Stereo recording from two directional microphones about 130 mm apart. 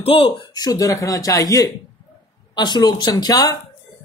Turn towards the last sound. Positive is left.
turn(degrees=30)  # may be behind; listen again after turning